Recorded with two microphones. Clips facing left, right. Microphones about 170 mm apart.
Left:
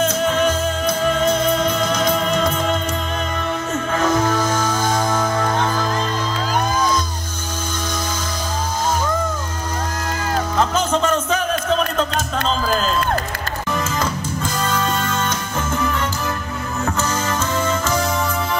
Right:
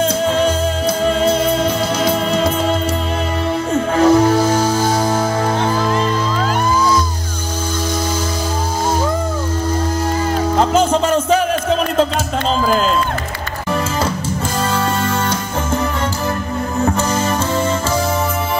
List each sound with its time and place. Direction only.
0.0 s music: 30° right (ahead or behind)
3.9 s music: 35° right (ahead or behind)
10.5 s music: 30° right (ahead or behind)
14.6 s music: 30° right (ahead or behind)
16.8 s music: 30° right (ahead or behind)